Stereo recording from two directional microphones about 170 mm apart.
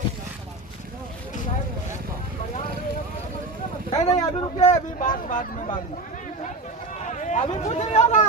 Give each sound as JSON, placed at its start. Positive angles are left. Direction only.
{"t": 3.9, "sound": "speech", "side_deg": 40}
{"t": 7.2, "sound": "a sound", "side_deg": 45}
{"t": 7.5, "sound": "speech", "side_deg": 40}